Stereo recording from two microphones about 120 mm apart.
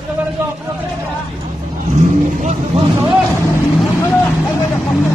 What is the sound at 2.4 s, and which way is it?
Speech, 70° right (ahead or behind).